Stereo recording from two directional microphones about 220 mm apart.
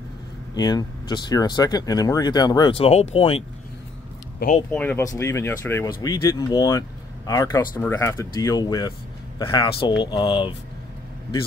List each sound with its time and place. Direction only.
0.6 s speech: 20° left (ahead or behind)
4.6 s speech: 10° left (ahead or behind)